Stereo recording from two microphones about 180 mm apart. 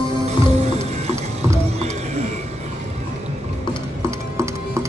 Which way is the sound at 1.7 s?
35° right (ahead or behind).